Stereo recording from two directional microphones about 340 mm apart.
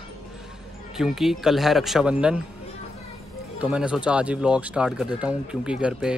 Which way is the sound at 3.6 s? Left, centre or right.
Centre.